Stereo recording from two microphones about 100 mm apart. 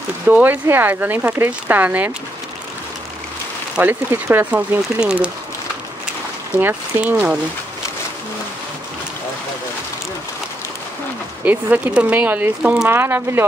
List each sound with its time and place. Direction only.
0.3 s speech: 20° right (ahead or behind)
3.8 s speech: 20° right (ahead or behind)
6.6 s speech: 15° right (ahead or behind)
11.4 s speech: 15° right (ahead or behind)